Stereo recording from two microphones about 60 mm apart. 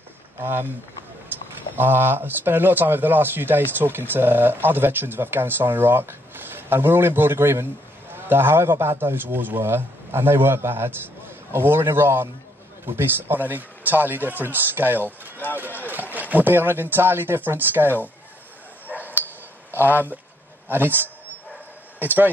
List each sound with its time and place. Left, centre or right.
0.4 s speech: right
1.8 s speech: right
18.9 s dog: right
19.8 s a man's voice: right